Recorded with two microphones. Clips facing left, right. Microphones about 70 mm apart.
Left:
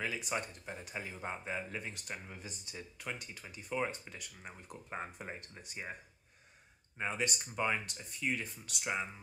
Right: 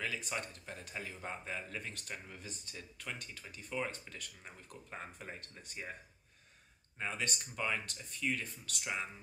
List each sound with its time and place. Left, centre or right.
0.0 s a man's voice: centre
7.0 s a man's voice: centre